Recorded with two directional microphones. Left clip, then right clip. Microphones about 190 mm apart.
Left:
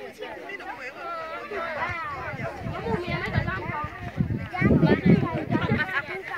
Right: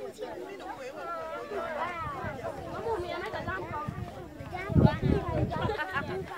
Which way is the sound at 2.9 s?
35° left (ahead or behind).